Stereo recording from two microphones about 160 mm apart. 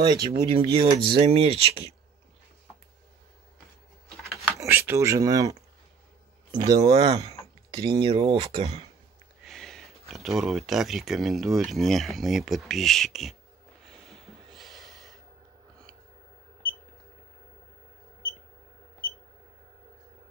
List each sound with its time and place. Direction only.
0.3 s speech: 35° right (ahead or behind)
4.6 s speech: 15° right (ahead or behind)
6.5 s speech: 30° right (ahead or behind)
9.4 s a sound: centre (ahead or behind)
10.0 s speech: centre (ahead or behind)
13.8 s snort: centre (ahead or behind)